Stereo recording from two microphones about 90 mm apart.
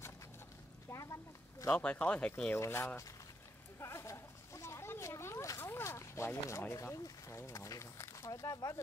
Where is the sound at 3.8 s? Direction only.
30° left (ahead or behind).